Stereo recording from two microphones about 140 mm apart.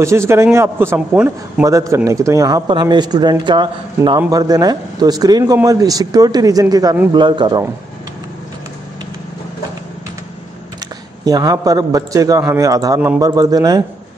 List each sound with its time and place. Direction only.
0.0 s a man's voice: 20° right (ahead or behind)
1.7 s a man's voice: 20° right (ahead or behind)
11.2 s a man's voice: 25° right (ahead or behind)